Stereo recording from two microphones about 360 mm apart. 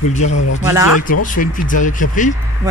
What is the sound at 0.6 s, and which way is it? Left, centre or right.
Speech, centre.